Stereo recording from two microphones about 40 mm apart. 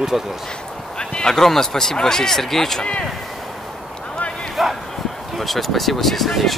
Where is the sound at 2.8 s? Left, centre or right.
Left.